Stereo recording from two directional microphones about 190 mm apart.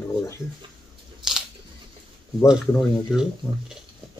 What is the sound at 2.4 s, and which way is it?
Speech, 5° right (ahead or behind).